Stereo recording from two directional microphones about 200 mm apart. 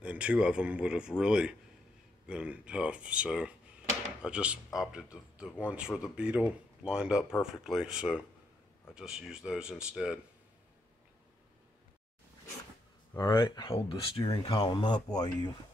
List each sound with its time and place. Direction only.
0.0 s speech: 5° right (ahead or behind)
13.1 s speech: 15° left (ahead or behind)